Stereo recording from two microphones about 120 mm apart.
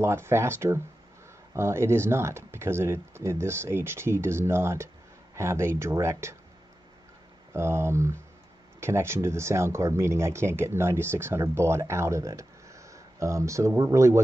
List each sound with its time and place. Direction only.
0.0 s speech: 20° right (ahead or behind)
7.5 s speech: 20° right (ahead or behind)